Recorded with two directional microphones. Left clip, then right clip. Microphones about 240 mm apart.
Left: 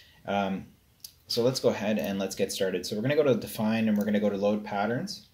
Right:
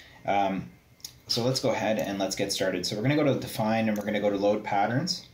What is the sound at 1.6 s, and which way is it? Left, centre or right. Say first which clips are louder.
Speech: right 1 dB; left.